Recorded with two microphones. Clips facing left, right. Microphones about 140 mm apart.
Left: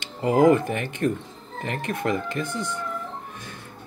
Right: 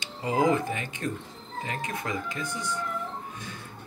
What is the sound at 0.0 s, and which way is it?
Speech, 60° left (ahead or behind).